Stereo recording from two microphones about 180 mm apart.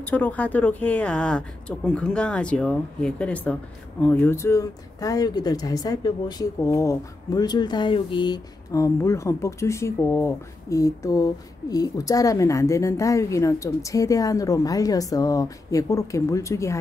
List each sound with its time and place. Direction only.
0.0 s a woman's voice: 10° left (ahead or behind)